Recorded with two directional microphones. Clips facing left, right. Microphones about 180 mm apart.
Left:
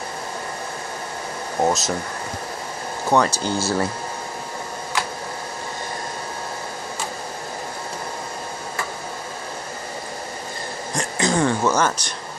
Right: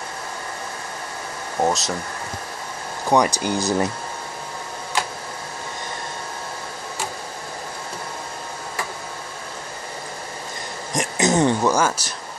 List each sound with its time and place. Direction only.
1.6 s speech: centre (ahead or behind)
3.1 s speech: 15° right (ahead or behind)
10.9 s a sound: 20° right (ahead or behind)
11.7 s speech: 10° right (ahead or behind)